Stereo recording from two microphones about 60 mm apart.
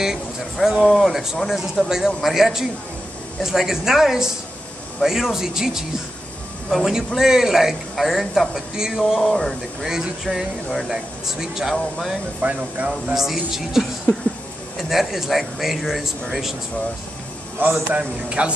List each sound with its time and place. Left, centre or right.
0.0 s a man's voice: centre
9.2 s speech: centre
9.8 s a man's voice: centre
12.4 s speech: right
13.1 s a man's voice: centre
17.6 s a man's voice: right
17.9 s a man's voice: centre